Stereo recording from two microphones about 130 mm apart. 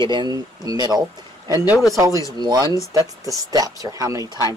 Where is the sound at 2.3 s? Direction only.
35° right (ahead or behind).